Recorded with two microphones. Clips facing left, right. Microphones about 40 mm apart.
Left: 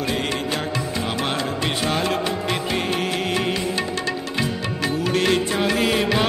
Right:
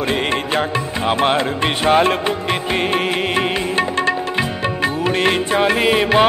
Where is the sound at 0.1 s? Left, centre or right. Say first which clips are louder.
Right 5 dB; right.